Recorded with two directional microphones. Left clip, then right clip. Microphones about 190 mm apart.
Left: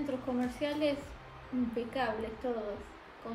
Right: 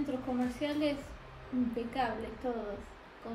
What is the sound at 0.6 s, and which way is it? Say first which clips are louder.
Speech: left 2 dB; 15° left (ahead or behind).